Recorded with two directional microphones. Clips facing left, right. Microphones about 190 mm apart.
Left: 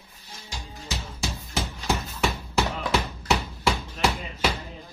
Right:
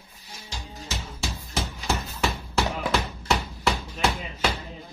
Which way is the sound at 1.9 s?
10° right (ahead or behind).